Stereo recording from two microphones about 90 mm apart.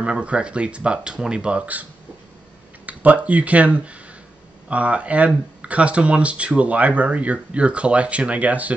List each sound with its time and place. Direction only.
0.0 s speech: 15° right (ahead or behind)
2.9 s speech: 15° right (ahead or behind)